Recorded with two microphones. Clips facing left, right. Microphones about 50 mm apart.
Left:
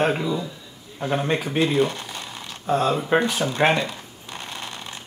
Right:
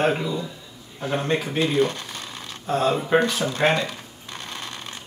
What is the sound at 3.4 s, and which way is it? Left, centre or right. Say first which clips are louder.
Speech: left 1 dB; left.